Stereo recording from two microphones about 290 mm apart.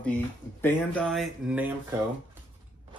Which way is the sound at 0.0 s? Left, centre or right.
Centre.